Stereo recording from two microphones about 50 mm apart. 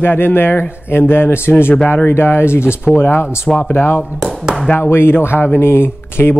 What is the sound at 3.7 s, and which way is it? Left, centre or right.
Speech, left.